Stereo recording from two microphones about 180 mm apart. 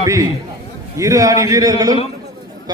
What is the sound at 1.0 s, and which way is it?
A man's voice, 20° right (ahead or behind).